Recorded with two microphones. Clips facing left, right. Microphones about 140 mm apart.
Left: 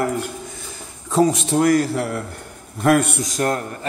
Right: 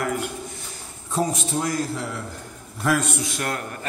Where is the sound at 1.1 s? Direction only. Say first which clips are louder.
Left 7 dB; 80° left; by 3.2 s 60° left (ahead or behind).